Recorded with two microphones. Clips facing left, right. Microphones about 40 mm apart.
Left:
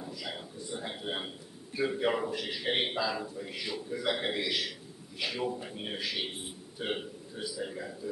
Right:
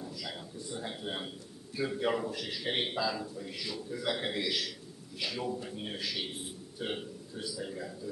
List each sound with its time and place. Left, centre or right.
0.2 s a man's voice: centre